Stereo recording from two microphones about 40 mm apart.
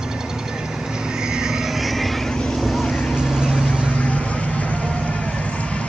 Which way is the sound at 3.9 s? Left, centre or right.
Left.